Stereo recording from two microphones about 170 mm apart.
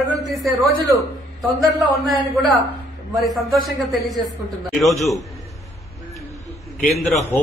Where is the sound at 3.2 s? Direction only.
Centre (ahead or behind).